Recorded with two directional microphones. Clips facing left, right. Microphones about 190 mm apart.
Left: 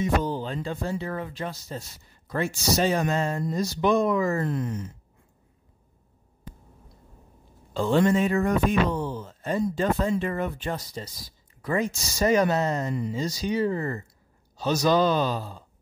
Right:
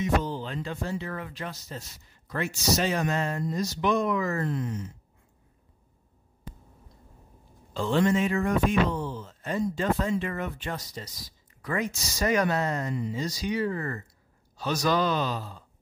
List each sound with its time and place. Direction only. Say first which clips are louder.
0.2 s music: left 4 dB; 50° left (ahead or behind)
0.5 s speech: left 3 dB; 30° left (ahead or behind)
4.5 s speech: left 2 dB; 50° left (ahead or behind)
7.7 s speech: left 3 dB; 45° left (ahead or behind)